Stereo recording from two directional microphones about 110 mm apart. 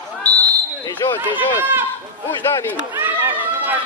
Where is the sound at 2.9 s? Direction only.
20° right (ahead or behind).